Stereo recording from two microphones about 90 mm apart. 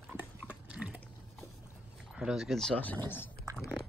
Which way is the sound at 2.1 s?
5° right (ahead or behind).